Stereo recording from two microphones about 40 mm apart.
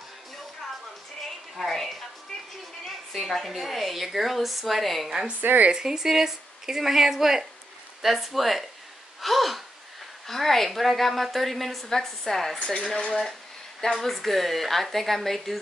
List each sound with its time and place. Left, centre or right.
1.6 s a woman's voice: centre
5.4 s a woman's voice: right
5.7 s a woman's voice: centre
12.7 s speech: left
13.2 s a sound: centre
13.9 s a woman's voice: centre